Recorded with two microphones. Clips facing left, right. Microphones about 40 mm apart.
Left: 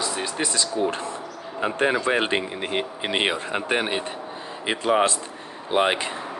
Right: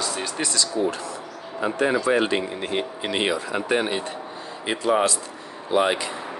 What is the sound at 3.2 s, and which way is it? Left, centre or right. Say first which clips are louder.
Speech: even; left.